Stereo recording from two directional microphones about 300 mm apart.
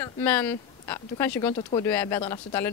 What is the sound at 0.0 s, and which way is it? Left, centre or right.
Speech, centre.